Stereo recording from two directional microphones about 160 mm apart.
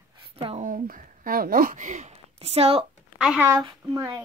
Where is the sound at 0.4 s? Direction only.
35° right (ahead or behind).